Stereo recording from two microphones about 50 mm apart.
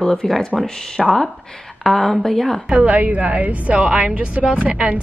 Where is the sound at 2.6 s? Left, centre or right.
Right.